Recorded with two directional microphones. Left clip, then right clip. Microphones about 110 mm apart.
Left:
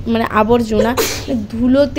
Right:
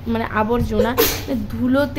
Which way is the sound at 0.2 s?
40° left (ahead or behind).